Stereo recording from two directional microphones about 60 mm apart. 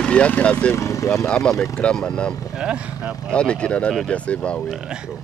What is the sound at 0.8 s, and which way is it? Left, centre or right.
Speech, left.